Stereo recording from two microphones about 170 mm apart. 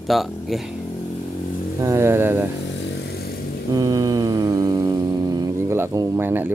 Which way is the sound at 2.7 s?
90° left.